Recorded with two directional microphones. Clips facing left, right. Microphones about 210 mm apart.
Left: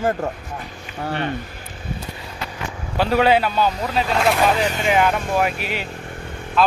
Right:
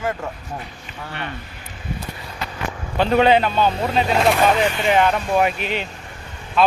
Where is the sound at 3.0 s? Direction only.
5° left (ahead or behind).